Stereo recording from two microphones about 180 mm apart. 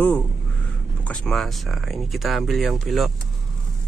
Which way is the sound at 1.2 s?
Centre (ahead or behind).